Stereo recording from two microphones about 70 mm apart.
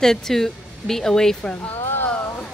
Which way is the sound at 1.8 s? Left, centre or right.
Left.